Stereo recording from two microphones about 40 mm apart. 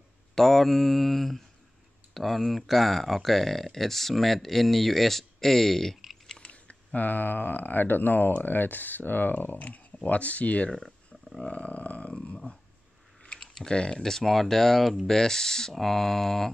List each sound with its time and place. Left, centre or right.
0.3 s speech: centre
6.4 s speech: left
9.6 s speech: left
13.4 s typing: centre
13.7 s speech: left